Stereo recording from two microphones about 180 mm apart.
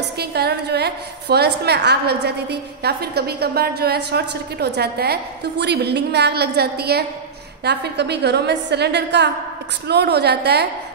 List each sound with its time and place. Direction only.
0.2 s a woman's voice: 65° right (ahead or behind)